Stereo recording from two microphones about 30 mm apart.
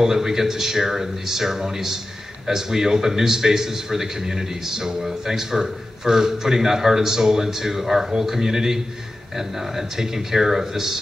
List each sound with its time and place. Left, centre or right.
0.0 s a man's voice: centre